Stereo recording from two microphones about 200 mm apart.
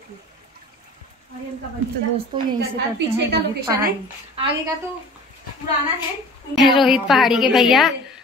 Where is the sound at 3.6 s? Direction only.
15° right (ahead or behind).